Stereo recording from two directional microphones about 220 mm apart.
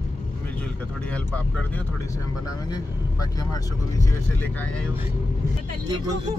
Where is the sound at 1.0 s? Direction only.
5° left (ahead or behind).